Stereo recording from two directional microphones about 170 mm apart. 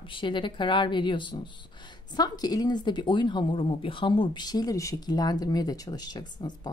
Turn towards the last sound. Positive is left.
turn(degrees=25)  # may be behind; listen again after turning